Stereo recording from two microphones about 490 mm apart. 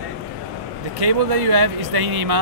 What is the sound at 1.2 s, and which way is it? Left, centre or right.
Speech, right.